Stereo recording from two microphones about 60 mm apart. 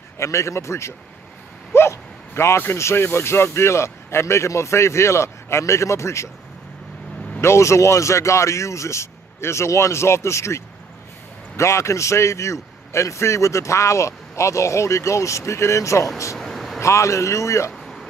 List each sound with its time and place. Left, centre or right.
0.2 s speech: left
1.7 s a sound: left
2.6 s speech: left
7.3 s a man's voice: left
16.3 s vehicle: centre
16.8 s a man's voice: left
17.7 s a sound: centre